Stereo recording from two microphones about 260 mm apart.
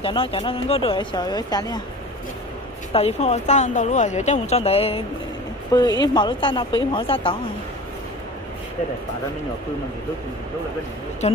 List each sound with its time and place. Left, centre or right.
0.0 s speech: left
2.9 s speech: left
11.2 s speech: left